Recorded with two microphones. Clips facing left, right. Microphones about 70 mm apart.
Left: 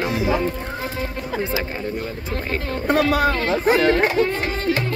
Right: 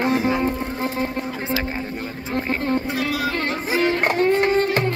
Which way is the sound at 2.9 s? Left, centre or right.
Left.